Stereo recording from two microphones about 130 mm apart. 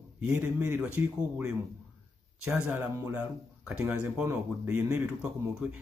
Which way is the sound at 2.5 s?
15° right (ahead or behind).